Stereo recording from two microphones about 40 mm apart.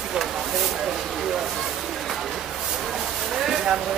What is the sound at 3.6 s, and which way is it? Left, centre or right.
Speech, centre.